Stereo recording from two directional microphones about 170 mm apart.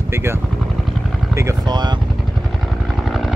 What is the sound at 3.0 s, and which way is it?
Vehicle, centre (ahead or behind).